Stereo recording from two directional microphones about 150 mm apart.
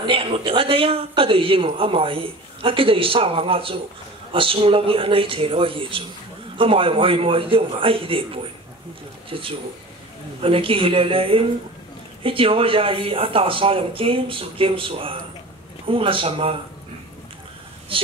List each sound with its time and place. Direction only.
0.0 s speech: 35° right (ahead or behind)
9.3 s speech: 35° right (ahead or behind)
17.9 s speech: 35° right (ahead or behind)